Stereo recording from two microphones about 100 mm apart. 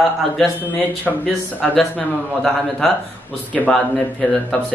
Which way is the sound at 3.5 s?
15° left (ahead or behind).